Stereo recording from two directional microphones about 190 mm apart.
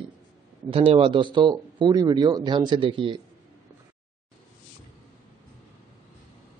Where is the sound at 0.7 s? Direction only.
25° right (ahead or behind).